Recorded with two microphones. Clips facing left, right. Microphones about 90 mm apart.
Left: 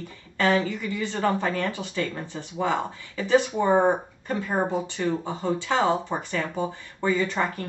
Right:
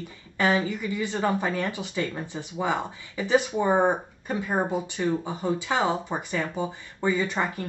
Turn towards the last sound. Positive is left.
turn(degrees=-15)  # may be behind; listen again after turning